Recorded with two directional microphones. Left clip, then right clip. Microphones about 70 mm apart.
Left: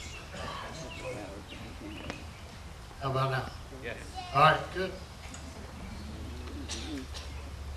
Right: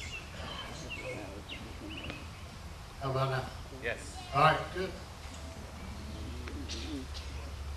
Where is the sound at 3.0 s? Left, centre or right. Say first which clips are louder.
Left 2 dB; centre.